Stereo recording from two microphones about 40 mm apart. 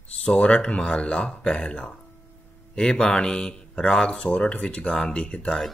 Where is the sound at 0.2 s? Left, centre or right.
Left.